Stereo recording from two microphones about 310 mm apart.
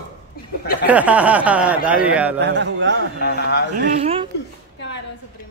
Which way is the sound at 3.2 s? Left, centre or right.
Left.